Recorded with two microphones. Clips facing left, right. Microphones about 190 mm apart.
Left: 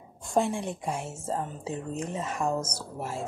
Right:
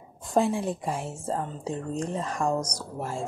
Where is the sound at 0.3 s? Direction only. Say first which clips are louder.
Right 2 dB; centre (ahead or behind).